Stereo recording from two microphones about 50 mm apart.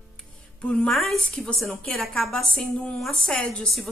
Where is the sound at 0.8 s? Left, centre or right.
Centre.